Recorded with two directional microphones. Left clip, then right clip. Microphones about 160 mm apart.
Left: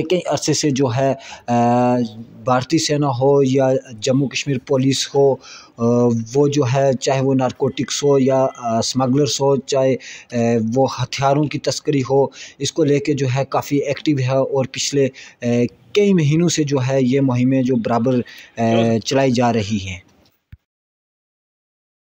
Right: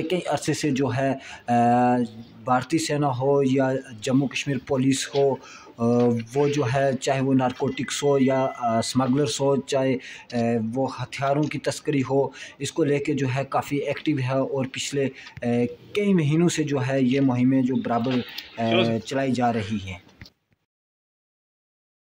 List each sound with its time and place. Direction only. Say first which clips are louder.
0.0 s speech: left 6 dB; 25° left (ahead or behind)